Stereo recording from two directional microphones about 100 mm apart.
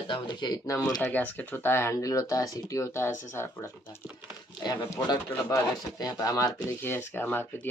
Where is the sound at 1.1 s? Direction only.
15° left (ahead or behind).